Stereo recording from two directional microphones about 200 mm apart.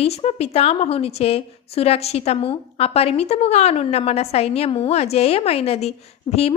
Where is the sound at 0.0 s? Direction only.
30° left (ahead or behind).